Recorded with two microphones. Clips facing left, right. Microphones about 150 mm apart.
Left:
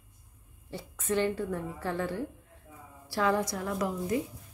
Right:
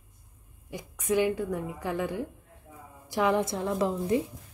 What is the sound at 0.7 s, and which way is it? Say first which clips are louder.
A woman's voice: right 3 dB; 15° right (ahead or behind).